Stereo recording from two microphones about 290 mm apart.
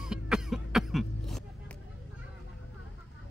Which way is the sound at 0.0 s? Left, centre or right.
Centre.